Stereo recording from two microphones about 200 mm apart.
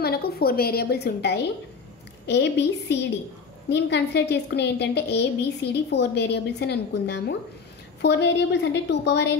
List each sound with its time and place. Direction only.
0.0 s a woman's voice: 50° left (ahead or behind)